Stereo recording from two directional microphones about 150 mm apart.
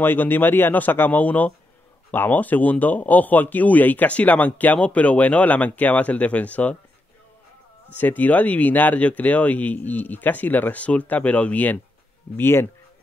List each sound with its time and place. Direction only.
0.0 s speech: 15° left (ahead or behind)
7.9 s speech: 10° left (ahead or behind)